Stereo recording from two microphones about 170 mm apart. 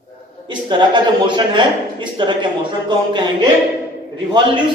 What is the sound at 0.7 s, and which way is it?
Speech, 25° right (ahead or behind).